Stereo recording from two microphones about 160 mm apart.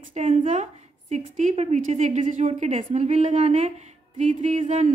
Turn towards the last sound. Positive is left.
turn(degrees=-50)  # may be behind; listen again after turning